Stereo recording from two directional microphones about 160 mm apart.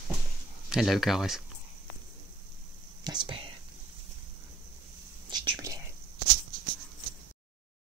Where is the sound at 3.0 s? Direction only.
25° right (ahead or behind).